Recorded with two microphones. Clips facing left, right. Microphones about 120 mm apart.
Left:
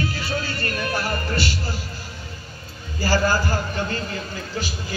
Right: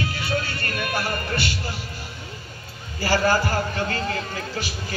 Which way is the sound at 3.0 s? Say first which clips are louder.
Even; 35° left (ahead or behind).